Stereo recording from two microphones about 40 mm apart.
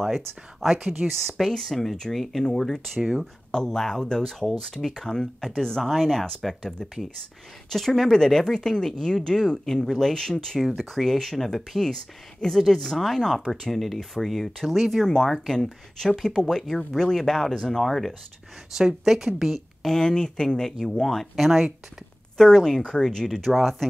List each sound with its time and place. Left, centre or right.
0.0 s speech: centre
0.7 s speech: centre
1.5 s speech: centre
18.8 s speech: centre
19.9 s speech: centre
21.4 s speech: centre
22.4 s speech: centre
23.5 s speech: centre